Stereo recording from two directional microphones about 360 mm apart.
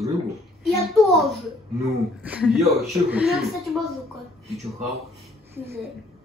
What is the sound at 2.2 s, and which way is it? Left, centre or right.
Speech, centre.